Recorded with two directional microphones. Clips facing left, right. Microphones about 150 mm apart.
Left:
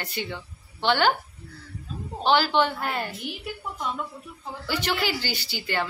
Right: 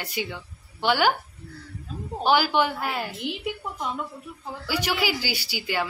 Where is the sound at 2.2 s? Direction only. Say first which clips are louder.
Even; 10° right (ahead or behind).